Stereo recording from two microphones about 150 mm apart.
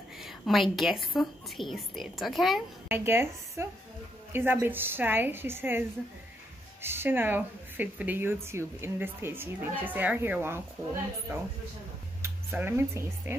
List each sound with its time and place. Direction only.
0.2 s a woman's voice: centre (ahead or behind)
2.9 s a woman's voice: 15° right (ahead or behind)